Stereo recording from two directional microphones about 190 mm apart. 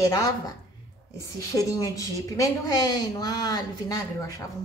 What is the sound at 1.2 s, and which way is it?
A woman's voice, 20° left (ahead or behind).